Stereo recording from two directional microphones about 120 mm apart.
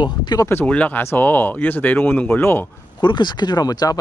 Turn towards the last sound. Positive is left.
turn(degrees=30)  # may be behind; listen again after turning